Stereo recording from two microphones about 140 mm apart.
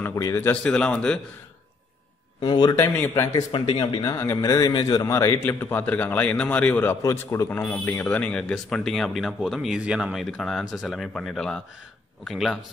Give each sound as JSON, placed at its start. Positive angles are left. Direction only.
{"t": 0.0, "sound": "a man's voice", "side_deg": 20}
{"t": 2.4, "sound": "speech", "side_deg": 30}
{"t": 2.7, "sound": "a man's voice", "side_deg": 15}
{"t": 3.5, "sound": "speech", "side_deg": 30}
{"t": 4.1, "sound": "a man's voice", "side_deg": 15}